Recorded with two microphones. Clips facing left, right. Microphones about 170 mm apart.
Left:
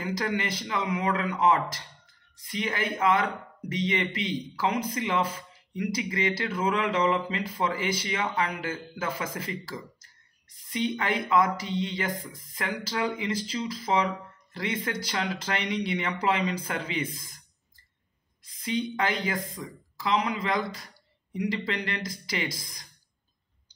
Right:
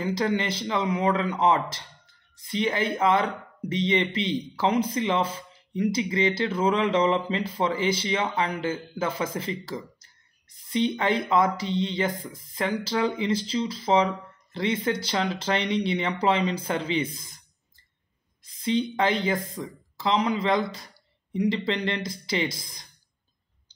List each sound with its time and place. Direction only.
0.0 s speech: 30° right (ahead or behind)
18.6 s speech: 30° right (ahead or behind)